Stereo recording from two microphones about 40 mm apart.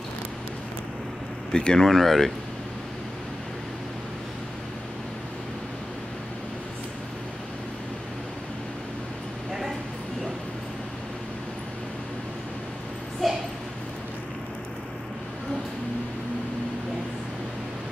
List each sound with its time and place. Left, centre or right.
1.5 s speech: centre
1.9 s speech: centre
13.2 s a sound: centre